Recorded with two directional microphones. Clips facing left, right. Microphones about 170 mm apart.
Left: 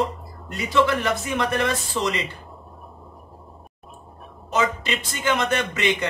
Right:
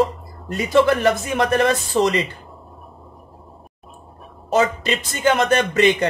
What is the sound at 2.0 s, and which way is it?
Speech, 45° right (ahead or behind).